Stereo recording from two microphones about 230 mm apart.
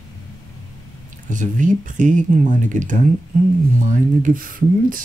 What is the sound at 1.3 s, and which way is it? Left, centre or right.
Speech, right.